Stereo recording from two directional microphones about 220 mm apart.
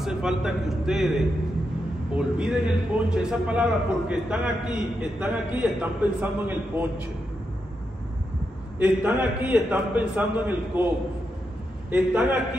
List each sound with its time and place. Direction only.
0.0 s a man's voice: centre (ahead or behind)
8.7 s a man's voice: 10° right (ahead or behind)
11.9 s a man's voice: 5° right (ahead or behind)